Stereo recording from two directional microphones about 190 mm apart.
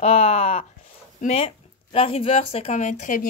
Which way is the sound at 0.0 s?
30° left (ahead or behind).